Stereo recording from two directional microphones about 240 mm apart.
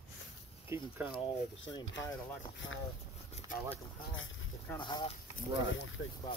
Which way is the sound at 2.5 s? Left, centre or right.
Left.